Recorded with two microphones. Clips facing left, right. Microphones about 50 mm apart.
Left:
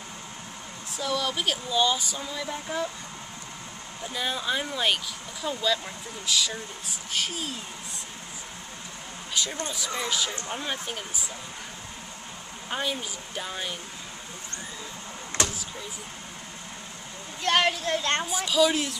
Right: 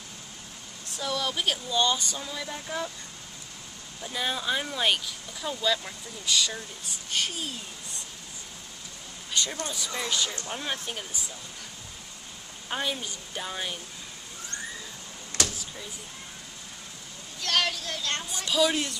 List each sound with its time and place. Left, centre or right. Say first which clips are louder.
0.9 s speech: left 2 dB; centre
4.1 s speech: even; centre
9.3 s a sound: even; centre
9.9 s speech: left 1 dB; centre
12.6 s speech: left 1 dB; centre
15.3 s a sound: left 2 dB; left
17.4 s speech: left 4 dB; left
18.3 s speech: left 1 dB; centre